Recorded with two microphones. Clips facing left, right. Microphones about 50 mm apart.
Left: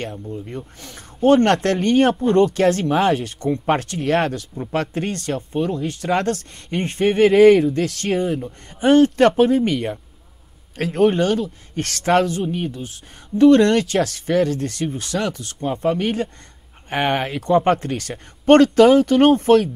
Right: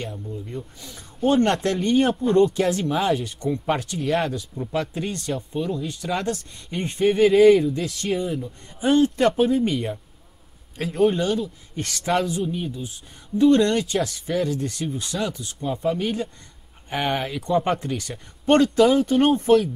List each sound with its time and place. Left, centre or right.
0.1 s speech: left